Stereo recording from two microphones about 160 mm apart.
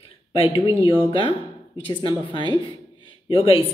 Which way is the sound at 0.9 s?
35° left (ahead or behind).